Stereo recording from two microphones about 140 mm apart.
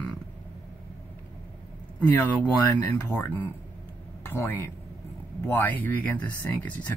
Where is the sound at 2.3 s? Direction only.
10° left (ahead or behind).